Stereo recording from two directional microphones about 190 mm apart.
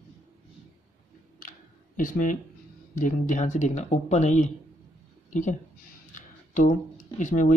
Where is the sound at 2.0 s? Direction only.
45° left (ahead or behind).